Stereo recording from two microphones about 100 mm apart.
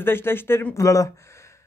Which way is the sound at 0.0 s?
25° left (ahead or behind).